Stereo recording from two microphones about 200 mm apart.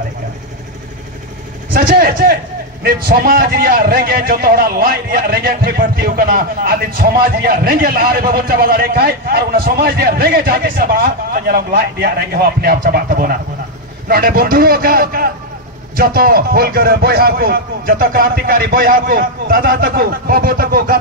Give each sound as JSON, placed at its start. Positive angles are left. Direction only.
{"t": 1.7, "sound": "a man's voice", "side_deg": -50}